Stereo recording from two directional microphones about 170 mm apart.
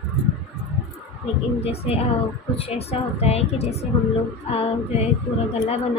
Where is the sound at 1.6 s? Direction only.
35° left (ahead or behind).